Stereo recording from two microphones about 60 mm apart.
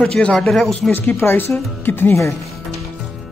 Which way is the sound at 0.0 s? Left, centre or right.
Centre.